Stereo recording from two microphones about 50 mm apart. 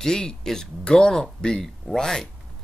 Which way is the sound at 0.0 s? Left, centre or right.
Centre.